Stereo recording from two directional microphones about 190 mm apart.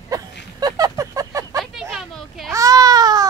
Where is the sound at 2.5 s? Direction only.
20° right (ahead or behind).